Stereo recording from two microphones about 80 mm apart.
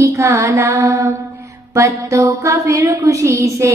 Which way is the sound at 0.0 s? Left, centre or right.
Right.